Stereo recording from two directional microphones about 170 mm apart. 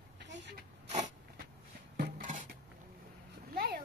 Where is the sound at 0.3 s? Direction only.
90° right.